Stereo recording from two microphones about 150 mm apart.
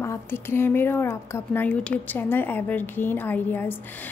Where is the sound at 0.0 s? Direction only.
15° left (ahead or behind).